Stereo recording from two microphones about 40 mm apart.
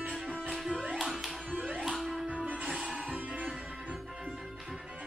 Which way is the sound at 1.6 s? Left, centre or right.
Right.